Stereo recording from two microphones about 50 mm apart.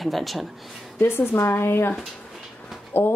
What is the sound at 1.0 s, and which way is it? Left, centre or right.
Speech, left.